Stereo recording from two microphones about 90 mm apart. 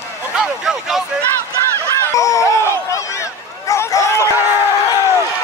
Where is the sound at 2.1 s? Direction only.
35° left (ahead or behind).